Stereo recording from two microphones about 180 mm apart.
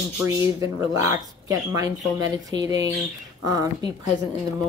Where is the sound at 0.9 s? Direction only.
20° right (ahead or behind).